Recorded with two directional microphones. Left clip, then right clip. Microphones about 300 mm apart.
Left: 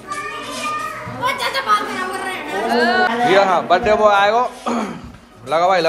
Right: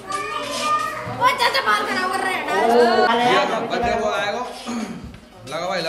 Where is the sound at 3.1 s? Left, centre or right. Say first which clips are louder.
Left 3 dB; centre.